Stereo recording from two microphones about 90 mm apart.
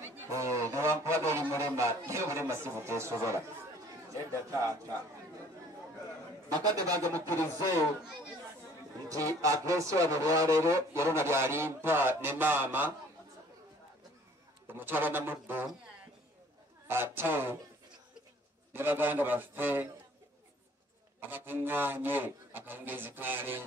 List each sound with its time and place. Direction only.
0.0 s a sound: 35° right (ahead or behind)
4.1 s speech: 35° right (ahead or behind)
6.6 s speech: 45° right (ahead or behind)
7.2 s speech: 25° left (ahead or behind)
9.1 s speech: 40° right (ahead or behind); by 12.9 s 20° right (ahead or behind)
14.7 s a man's voice: 25° right (ahead or behind)
16.8 s a man's voice: 25° right (ahead or behind)
18.7 s a man's voice: 25° right (ahead or behind)
21.2 s a man's voice: 20° right (ahead or behind)